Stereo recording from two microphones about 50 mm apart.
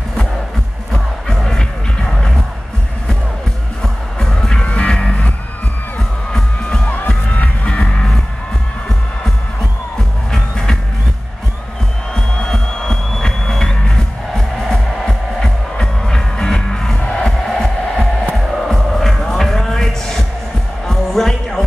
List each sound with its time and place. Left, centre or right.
1.2 s music: centre
3.8 s music: centre
12.1 s music: centre